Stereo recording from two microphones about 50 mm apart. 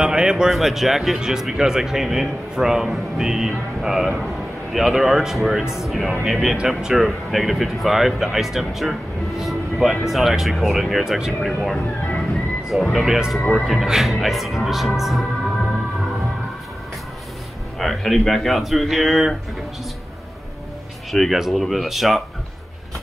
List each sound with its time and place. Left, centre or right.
0.0 s a sound: centre
0.5 s speech: centre
6.5 s speech: centre
12.7 s speech: centre
13.0 s speech: centre
17.7 s speech: centre
21.1 s speech: centre